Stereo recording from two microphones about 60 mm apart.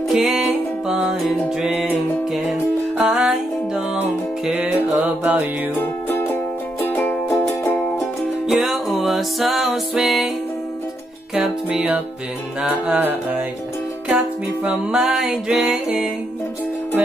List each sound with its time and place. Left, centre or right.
0.1 s music: centre
3.0 s music: centre
5.0 s music: right
6.9 s music: left
8.5 s music: centre
11.3 s music: centre
12.6 s music: centre
14.0 s music: centre